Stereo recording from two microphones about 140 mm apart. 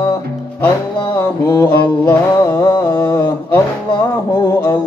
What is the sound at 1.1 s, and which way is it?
Mantra, 20° left (ahead or behind).